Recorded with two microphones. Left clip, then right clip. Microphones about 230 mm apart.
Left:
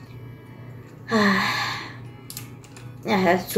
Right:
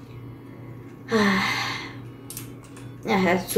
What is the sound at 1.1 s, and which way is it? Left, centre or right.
Gasp, centre.